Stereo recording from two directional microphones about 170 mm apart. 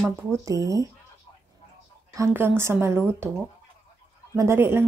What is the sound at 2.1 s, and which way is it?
A woman's voice, 15° right (ahead or behind).